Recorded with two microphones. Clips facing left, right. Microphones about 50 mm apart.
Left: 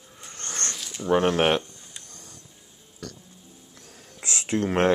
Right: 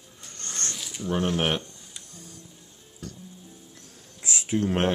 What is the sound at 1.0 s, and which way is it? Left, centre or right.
Speech, left.